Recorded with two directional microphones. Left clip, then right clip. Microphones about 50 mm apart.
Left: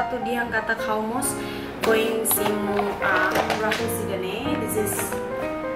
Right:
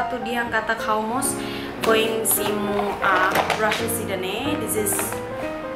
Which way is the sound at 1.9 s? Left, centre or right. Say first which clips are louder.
Right 2 dB; centre.